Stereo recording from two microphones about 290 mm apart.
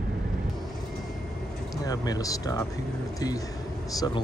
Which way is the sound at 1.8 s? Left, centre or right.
Centre.